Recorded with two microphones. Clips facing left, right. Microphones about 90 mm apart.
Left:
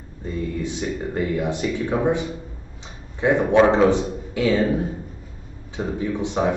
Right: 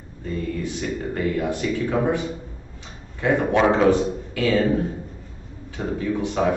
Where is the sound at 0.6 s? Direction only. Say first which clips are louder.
Left 1 dB; 20° left (ahead or behind).